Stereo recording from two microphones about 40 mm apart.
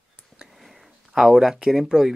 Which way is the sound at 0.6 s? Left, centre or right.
Centre.